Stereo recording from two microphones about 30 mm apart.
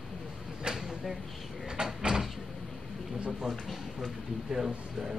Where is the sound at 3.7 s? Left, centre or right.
Centre.